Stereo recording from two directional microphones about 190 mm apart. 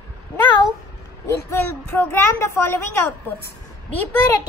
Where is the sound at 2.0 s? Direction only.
15° left (ahead or behind).